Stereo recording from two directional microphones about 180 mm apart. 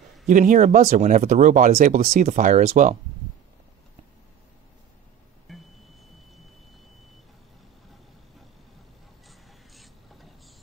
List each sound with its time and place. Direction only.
0.3 s speech: 45° right (ahead or behind)
5.5 s vehicle: centre (ahead or behind)
9.3 s music: centre (ahead or behind)